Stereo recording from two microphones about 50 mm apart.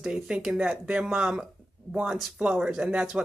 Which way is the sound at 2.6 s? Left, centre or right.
Centre.